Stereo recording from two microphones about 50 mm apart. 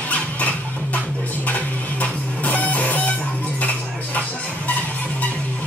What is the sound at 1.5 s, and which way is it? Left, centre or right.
Music, left.